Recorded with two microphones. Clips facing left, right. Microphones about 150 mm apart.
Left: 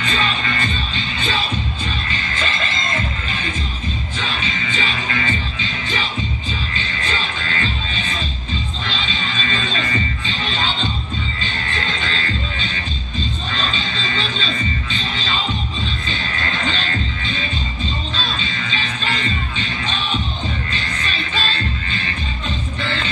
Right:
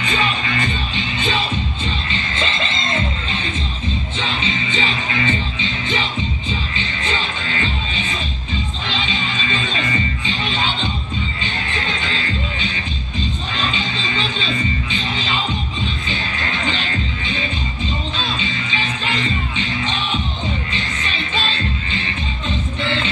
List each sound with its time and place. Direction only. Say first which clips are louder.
0.0 s music: right 1 dB; 15° right (ahead or behind)
4.2 s music: right 2 dB; 20° right (ahead or behind)
8.8 s music: right 2 dB; 15° right (ahead or behind)
12.0 s music: even; 15° right (ahead or behind)
13.7 s music: right 1 dB; 15° right (ahead or behind)
18.1 s music: right 2 dB; 15° right (ahead or behind)
20.7 s music: even; 20° right (ahead or behind)